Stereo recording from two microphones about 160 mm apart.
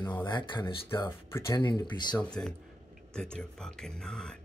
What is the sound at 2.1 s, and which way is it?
Speech, 5° left (ahead or behind).